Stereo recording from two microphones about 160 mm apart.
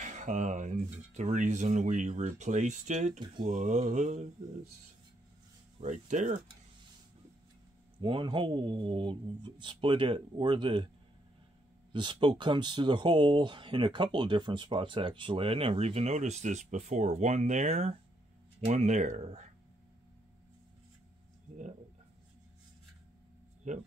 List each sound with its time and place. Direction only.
0.0 s speech: 50° right (ahead or behind)
5.8 s speech: 50° right (ahead or behind)
8.0 s speech: 30° right (ahead or behind)
11.9 s speech: 30° right (ahead or behind); by 19.5 s 45° right (ahead or behind)
23.6 s speech: 50° right (ahead or behind)